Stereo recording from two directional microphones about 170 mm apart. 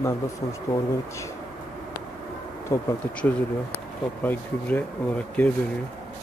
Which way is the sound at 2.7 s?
15° left (ahead or behind).